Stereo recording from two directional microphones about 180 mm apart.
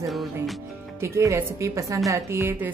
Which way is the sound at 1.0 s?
15° right (ahead or behind).